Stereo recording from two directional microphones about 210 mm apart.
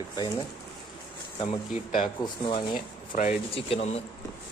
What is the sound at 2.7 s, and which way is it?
Speech, 40° left (ahead or behind).